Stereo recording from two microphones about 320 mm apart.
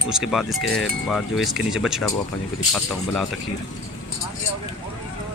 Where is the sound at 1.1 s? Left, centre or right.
Centre.